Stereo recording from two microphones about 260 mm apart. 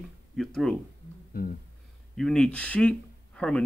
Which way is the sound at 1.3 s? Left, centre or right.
Left.